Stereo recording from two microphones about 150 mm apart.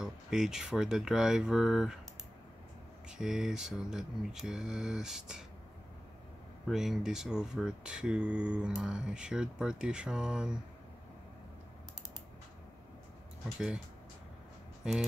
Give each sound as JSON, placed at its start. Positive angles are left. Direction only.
{"t": 0.0, "sound": "speech", "side_deg": -5}
{"t": 3.1, "sound": "speech", "side_deg": -5}
{"t": 6.7, "sound": "speech", "side_deg": 0}